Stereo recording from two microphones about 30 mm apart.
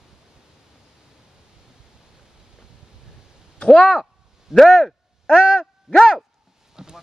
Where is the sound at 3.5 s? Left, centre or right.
Left.